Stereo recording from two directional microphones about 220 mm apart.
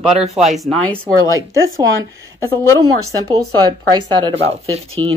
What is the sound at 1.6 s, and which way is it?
Speech, 65° right (ahead or behind).